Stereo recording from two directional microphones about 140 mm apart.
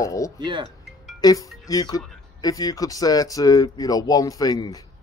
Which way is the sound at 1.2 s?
25° left (ahead or behind).